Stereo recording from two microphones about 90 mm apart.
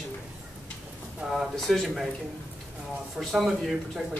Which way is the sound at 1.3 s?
Centre (ahead or behind).